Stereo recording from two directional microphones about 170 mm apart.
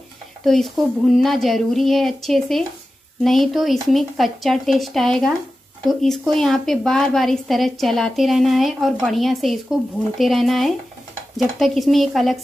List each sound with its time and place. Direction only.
0.5 s a woman's voice: centre (ahead or behind)